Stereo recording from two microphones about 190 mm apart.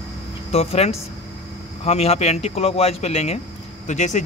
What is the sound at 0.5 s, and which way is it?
Speech, 30° left (ahead or behind).